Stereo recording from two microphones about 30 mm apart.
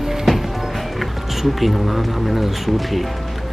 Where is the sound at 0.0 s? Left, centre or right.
Centre.